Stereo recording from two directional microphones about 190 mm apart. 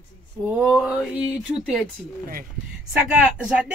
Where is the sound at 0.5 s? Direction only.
5° right (ahead or behind).